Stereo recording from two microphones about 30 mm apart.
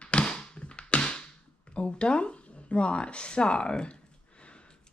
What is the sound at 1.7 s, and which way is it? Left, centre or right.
Speech, left.